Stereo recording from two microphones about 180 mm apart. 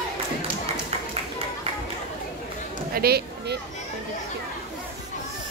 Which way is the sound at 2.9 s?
60° right (ahead or behind).